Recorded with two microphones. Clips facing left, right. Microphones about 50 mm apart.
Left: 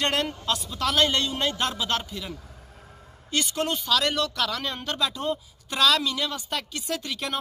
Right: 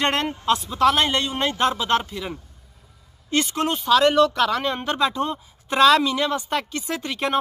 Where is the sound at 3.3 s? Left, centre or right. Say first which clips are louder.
Right 4 dB; right.